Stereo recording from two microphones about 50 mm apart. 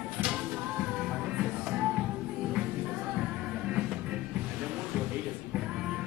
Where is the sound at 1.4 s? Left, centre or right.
Centre.